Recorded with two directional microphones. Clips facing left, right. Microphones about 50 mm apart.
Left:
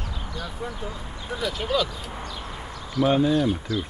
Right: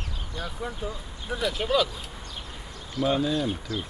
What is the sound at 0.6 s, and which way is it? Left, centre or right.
Speech, centre.